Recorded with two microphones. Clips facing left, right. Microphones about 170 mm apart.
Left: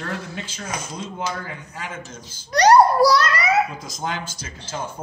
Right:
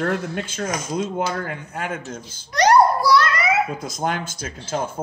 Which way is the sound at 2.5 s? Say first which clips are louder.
Left 1 dB; 35° left (ahead or behind).